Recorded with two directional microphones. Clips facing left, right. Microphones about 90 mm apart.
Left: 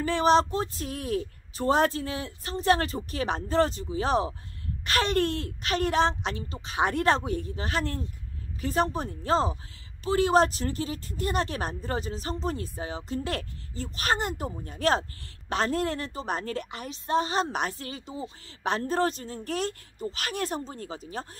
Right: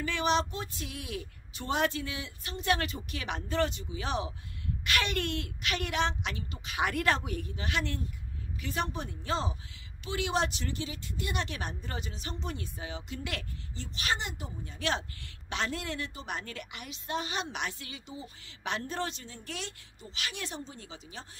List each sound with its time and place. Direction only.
0.0 s speech: 35° left (ahead or behind)